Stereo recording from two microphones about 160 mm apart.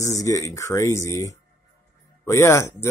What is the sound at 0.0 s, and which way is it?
Speech, 20° left (ahead or behind).